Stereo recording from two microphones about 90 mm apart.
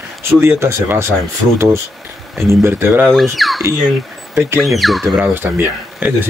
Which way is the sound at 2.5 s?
30° right (ahead or behind).